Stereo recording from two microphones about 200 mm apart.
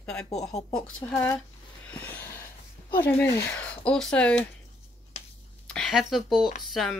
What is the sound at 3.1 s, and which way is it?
Speech, 10° left (ahead or behind).